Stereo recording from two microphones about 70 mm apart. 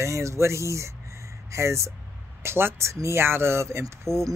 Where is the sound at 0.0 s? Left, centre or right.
Right.